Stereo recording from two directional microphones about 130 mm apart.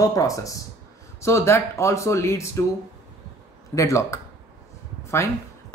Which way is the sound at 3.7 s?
25° left (ahead or behind).